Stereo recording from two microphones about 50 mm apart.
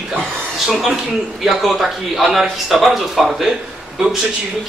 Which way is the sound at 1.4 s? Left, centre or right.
Centre.